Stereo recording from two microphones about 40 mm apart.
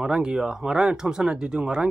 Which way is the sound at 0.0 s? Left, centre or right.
Centre.